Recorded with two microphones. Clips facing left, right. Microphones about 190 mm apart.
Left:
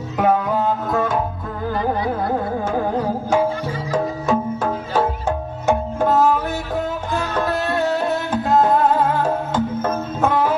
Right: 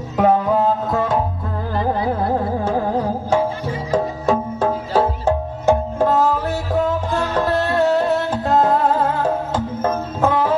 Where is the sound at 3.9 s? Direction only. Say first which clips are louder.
Right 1 dB; 30° right (ahead or behind).